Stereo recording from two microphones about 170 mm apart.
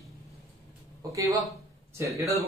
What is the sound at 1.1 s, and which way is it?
Speech, 20° right (ahead or behind).